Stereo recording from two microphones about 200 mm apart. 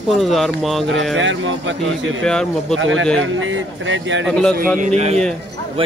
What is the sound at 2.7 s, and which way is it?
Speech, 75° right (ahead or behind).